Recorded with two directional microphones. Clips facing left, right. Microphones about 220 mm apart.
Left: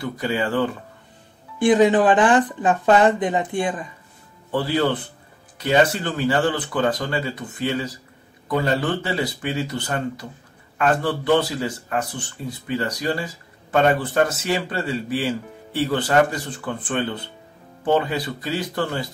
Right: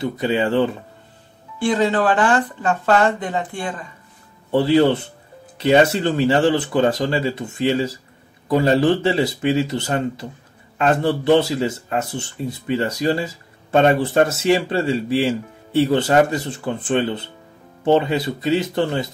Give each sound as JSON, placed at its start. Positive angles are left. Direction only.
{"t": 0.0, "sound": "speech", "side_deg": -25}
{"t": 1.6, "sound": "speech", "side_deg": 15}
{"t": 4.5, "sound": "speech", "side_deg": -25}